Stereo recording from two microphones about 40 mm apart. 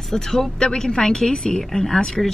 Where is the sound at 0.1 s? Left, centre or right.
Centre.